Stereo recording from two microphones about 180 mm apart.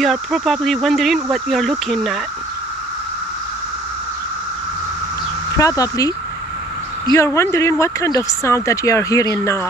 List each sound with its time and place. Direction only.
0.0 s speech: centre (ahead or behind)
5.6 s speech: 20° left (ahead or behind)